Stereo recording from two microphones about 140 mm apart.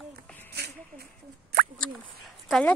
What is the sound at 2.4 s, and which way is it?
Speech, 5° left (ahead or behind).